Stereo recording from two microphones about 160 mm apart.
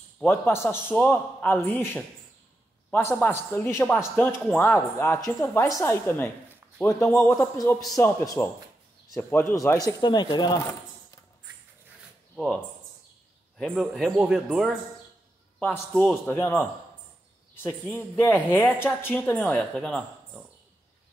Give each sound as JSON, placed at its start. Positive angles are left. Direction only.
{"t": 0.2, "sound": "a man's voice", "side_deg": 15}
{"t": 12.4, "sound": "a woman's voice", "side_deg": 5}
{"t": 15.6, "sound": "a man's voice", "side_deg": 10}